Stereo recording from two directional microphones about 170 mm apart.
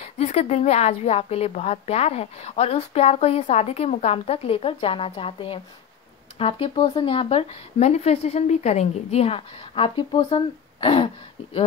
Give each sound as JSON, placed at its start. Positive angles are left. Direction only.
{"t": 0.0, "sound": "a woman's voice", "side_deg": 40}